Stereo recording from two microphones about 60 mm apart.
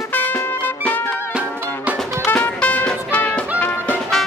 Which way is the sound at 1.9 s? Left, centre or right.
Right.